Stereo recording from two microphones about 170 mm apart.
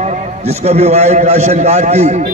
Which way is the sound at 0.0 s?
40° right (ahead or behind).